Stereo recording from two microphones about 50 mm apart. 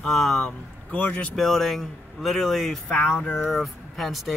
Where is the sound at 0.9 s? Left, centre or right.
Left.